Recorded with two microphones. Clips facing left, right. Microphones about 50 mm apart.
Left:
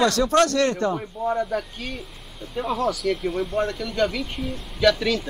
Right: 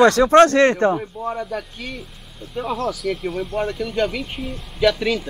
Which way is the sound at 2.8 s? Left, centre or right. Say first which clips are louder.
Even; centre.